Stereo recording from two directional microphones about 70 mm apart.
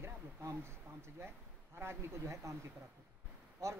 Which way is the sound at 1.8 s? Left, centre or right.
Right.